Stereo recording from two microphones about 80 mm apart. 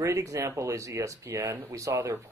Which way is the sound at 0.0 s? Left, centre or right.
Right.